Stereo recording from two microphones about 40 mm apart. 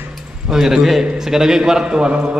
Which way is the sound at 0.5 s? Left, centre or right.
Centre.